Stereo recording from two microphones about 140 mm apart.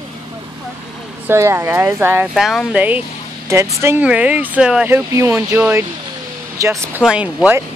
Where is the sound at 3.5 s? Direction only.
20° right (ahead or behind).